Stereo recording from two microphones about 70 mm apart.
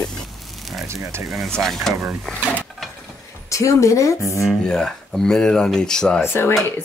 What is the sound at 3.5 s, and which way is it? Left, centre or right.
Speech, left.